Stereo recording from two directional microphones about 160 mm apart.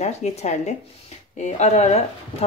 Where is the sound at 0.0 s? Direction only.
45° left (ahead or behind).